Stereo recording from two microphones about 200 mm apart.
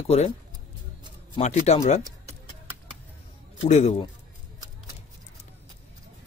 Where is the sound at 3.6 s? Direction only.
35° left (ahead or behind).